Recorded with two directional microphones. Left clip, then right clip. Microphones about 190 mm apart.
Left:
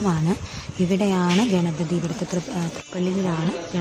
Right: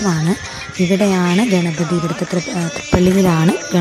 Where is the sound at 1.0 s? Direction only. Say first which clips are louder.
Right 6 dB; 20° right (ahead or behind).